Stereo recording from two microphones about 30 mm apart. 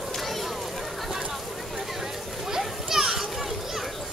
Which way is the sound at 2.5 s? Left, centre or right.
Centre.